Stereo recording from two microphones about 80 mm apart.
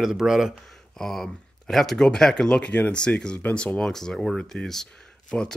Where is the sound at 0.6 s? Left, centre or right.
Centre.